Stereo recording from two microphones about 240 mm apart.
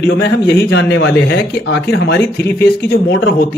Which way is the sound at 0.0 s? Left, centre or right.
Left.